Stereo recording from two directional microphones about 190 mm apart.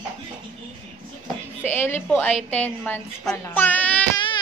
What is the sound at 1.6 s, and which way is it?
A woman's voice, 10° left (ahead or behind).